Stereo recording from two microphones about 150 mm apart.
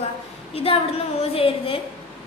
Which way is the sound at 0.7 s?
40° left (ahead or behind).